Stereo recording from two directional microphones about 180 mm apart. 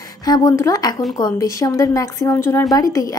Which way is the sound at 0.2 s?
20° left (ahead or behind).